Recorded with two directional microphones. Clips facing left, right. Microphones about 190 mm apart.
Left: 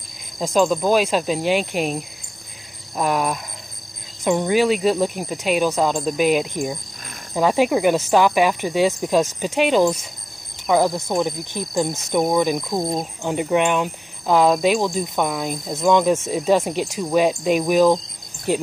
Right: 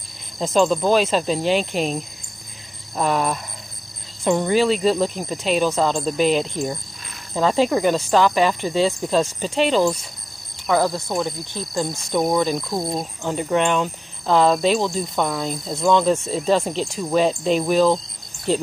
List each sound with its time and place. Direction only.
0.4 s speech: 10° left (ahead or behind)